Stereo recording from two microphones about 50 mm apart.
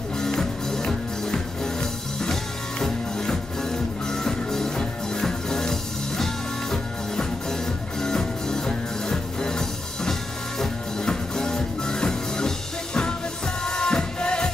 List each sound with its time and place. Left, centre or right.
0.2 s music: centre